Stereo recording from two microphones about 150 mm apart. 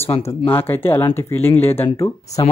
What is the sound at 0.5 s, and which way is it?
Speech, 15° left (ahead or behind).